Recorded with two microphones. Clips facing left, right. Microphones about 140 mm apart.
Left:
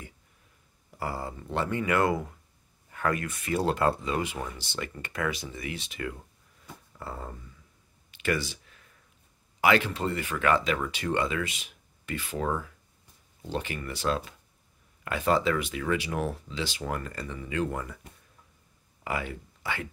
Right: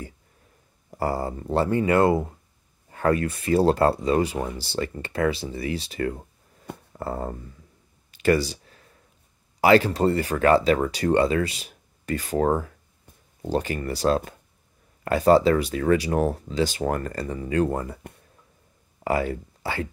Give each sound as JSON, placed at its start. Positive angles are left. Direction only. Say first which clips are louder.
{"t": 0.8, "sound": "speech", "louder": "right 8 dB", "side_deg": -40}
{"t": 6.6, "sound": "a sound", "louder": "right 9 dB", "side_deg": -50}
{"t": 8.1, "sound": "clicking", "louder": "right 9 dB", "side_deg": -35}
{"t": 9.6, "sound": "speech", "louder": "right 7 dB", "side_deg": -35}
{"t": 19.0, "sound": "speech", "louder": "right 9 dB", "side_deg": -40}